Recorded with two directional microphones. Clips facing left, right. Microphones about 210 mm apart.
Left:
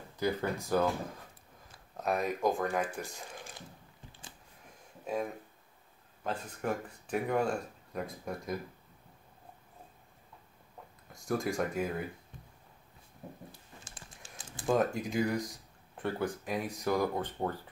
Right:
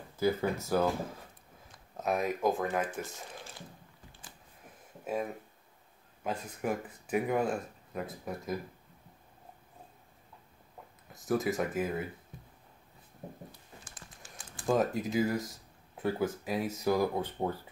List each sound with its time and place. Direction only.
0.2 s speech: 5° right (ahead or behind)
5.0 s speech: 5° right (ahead or behind)
11.1 s speech: centre (ahead or behind)
13.2 s a sound: 25° right (ahead or behind)
14.2 s typing: 25° left (ahead or behind)
14.7 s speech: centre (ahead or behind)